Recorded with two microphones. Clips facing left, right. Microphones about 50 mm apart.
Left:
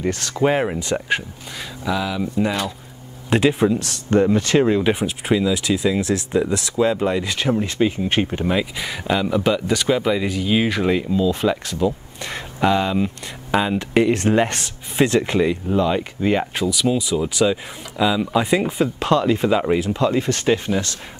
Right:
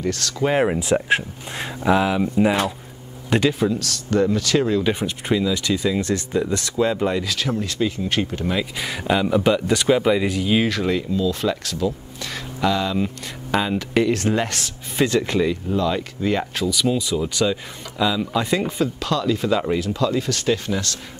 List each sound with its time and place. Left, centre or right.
0.0 s speech: left
0.6 s speech: centre
1.6 s speech: right
2.4 s speech: centre
3.4 s speech: left
4.9 s speech: centre
7.2 s speech: left
8.7 s speech: centre
10.7 s speech: centre
13.0 s speech: centre
13.9 s speech: left
16.7 s speech: centre
18.9 s speech: left
19.5 s speech: centre